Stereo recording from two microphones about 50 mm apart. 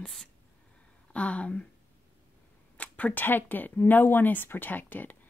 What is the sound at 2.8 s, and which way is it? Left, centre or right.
Speech, left.